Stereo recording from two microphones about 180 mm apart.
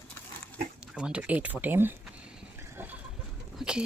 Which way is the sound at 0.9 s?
5° right (ahead or behind).